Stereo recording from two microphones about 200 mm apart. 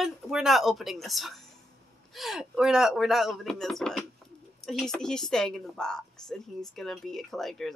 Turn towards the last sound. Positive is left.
turn(degrees=0)  # may be behind; listen again after turning